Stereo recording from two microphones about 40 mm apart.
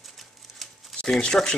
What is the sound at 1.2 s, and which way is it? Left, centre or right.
Speech, centre.